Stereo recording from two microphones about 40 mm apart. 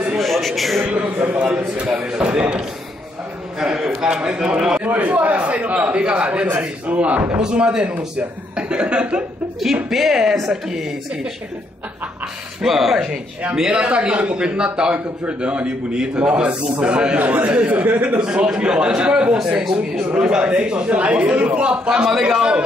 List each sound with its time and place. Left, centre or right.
0.2 s a man's voice: centre
0.9 s a man's voice: right
1.8 s speech: right
3.5 s speech: right
4.7 s a man's voice: right
7.3 s speech: right
9.8 s speech: centre
12.6 s speech: centre
13.6 s speech: right
17.2 s a man's voice: right
18.2 s speech: right